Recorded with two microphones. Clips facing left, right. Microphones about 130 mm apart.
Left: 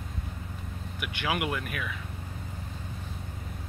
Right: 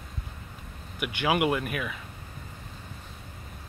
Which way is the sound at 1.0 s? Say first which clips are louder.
Right 6 dB; 10° right (ahead or behind).